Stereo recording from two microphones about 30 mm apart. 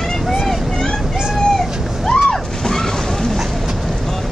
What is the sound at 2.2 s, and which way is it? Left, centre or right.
Slosh, centre.